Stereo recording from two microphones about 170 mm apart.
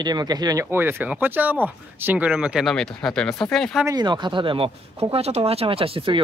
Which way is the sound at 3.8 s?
25° right (ahead or behind).